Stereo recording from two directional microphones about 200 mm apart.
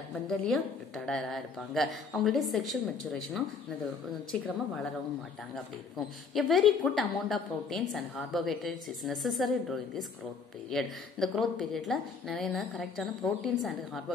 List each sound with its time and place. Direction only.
0.3 s a woman's voice: centre (ahead or behind)
5.9 s a woman's voice: centre (ahead or behind)